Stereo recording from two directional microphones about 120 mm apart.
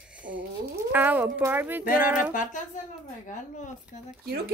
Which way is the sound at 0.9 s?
15° right (ahead or behind).